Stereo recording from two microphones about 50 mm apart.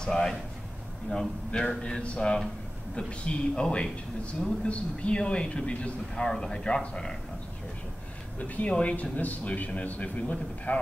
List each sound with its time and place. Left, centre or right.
0.0 s speech: centre
1.5 s a man's voice: centre
6.1 s speech: centre
8.4 s a man's voice: left